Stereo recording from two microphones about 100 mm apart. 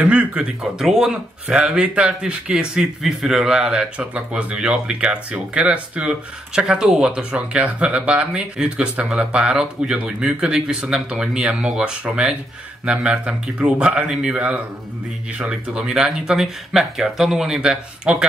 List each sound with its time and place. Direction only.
0.0 s speech: 10° right (ahead or behind)